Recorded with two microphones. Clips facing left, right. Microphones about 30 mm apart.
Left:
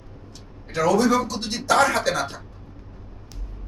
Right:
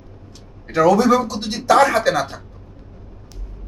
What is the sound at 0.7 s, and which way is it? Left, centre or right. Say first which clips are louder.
Speech: right 5 dB; centre.